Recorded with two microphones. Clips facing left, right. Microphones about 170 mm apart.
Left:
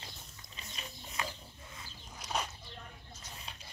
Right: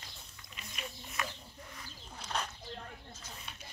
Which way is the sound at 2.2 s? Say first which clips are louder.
Left 1 dB; 10° left (ahead or behind).